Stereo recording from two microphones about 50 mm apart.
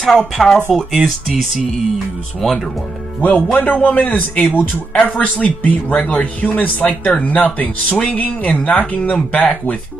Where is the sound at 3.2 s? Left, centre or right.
Left.